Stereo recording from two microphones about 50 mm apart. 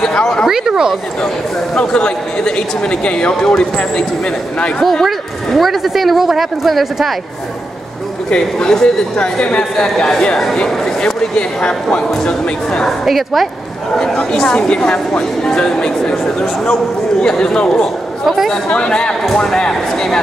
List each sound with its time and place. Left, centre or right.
0.0 s a sound: centre
0.5 s speech: centre
1.8 s a man's voice: centre
5.6 s speech: centre
8.3 s a man's voice: centre
13.0 s speech: centre
13.9 s speech: centre
18.2 s a woman's voice: centre
18.7 s a man's voice: centre